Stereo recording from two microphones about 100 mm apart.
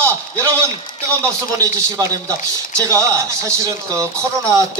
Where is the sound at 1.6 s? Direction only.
35° right (ahead or behind).